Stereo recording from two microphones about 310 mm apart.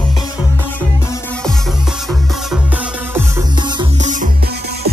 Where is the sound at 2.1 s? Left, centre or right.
Centre.